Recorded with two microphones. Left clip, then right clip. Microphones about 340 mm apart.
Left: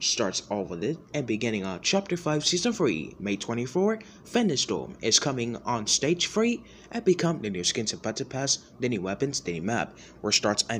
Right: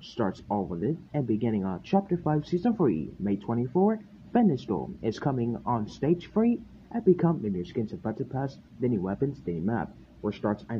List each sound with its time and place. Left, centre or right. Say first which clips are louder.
0.0 s speech: left 5 dB; right
1.1 s speech: even; right